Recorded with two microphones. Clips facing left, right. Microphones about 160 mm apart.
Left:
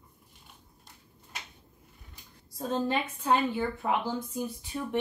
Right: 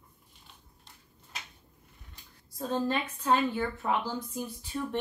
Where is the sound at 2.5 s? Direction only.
15° left (ahead or behind).